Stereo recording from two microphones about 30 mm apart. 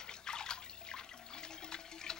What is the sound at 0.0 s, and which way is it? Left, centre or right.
Water, left.